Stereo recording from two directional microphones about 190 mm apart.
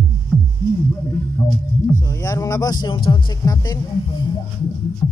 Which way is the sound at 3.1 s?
20° left (ahead or behind).